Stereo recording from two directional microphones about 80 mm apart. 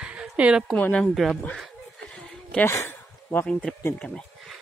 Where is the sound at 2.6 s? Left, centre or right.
Left.